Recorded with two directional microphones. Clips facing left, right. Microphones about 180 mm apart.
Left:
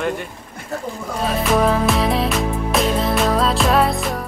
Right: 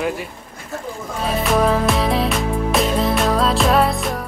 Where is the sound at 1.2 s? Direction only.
Centre (ahead or behind).